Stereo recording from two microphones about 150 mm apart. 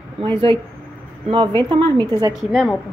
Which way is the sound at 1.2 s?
35° right (ahead or behind).